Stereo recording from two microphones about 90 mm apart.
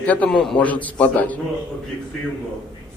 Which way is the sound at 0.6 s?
15° left (ahead or behind).